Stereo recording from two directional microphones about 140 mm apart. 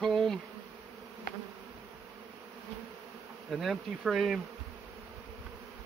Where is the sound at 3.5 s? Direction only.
5° right (ahead or behind).